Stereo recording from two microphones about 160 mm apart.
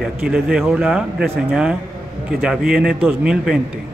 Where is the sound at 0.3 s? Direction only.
5° right (ahead or behind).